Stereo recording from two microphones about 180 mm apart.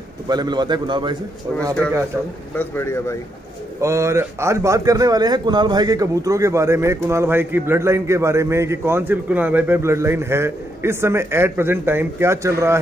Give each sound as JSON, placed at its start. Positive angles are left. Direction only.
{"t": 0.3, "sound": "a man's voice", "side_deg": -25}
{"t": 2.5, "sound": "a man's voice", "side_deg": 10}
{"t": 3.8, "sound": "a man's voice", "side_deg": -15}